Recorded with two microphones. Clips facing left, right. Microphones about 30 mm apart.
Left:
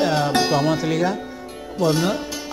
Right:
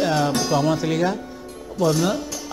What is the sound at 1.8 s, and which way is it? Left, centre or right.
Speech, left.